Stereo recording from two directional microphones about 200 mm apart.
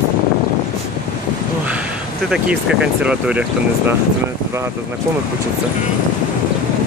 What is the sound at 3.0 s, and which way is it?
Speech, 5° right (ahead or behind).